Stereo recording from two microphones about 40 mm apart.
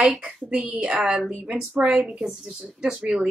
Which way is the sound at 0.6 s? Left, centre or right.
Right.